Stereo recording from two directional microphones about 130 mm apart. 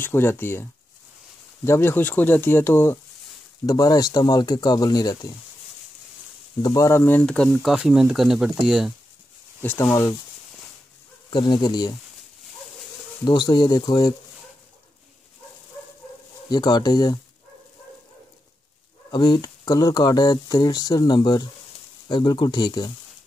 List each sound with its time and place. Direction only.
0.0 s speech: 20° left (ahead or behind)
6.6 s speech: 25° left (ahead or behind); by 8.9 s 5° right (ahead or behind)
9.6 s speech: 15° left (ahead or behind)
11.2 s speech: 35° left (ahead or behind)
13.2 s speech: 35° left (ahead or behind)
16.4 s speech: 30° left (ahead or behind)
19.0 s speech: 35° left (ahead or behind)